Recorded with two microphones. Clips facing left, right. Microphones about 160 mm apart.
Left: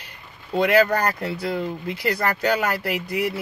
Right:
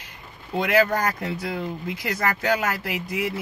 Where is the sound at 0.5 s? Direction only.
20° right (ahead or behind).